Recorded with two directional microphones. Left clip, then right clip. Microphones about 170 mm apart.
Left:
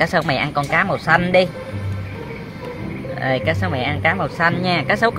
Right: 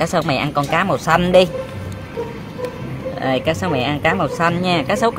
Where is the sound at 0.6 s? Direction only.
15° right (ahead or behind).